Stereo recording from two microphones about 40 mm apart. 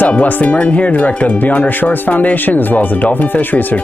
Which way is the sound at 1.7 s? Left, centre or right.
Left.